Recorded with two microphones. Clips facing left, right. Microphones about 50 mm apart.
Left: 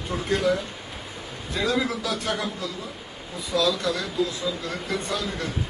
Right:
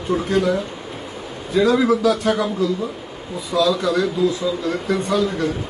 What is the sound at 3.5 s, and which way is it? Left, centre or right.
A man's voice, centre.